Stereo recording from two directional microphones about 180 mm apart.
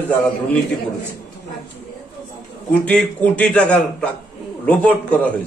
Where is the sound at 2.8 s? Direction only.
10° left (ahead or behind).